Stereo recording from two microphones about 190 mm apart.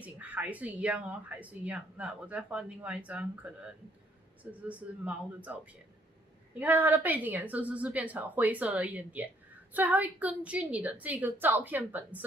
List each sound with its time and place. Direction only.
0.0 s speech: 10° right (ahead or behind)
6.6 s speech: 10° right (ahead or behind)